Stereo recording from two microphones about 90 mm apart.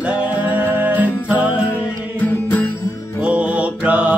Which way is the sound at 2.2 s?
20° left (ahead or behind).